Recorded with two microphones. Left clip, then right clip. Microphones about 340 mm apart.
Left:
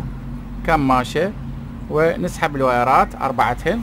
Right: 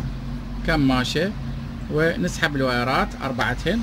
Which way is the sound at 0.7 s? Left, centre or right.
Centre.